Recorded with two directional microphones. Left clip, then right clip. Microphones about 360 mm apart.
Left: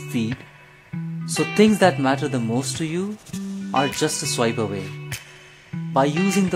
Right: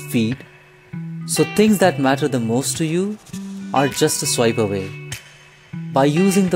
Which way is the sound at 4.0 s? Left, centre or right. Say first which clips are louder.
Right 4 dB; centre.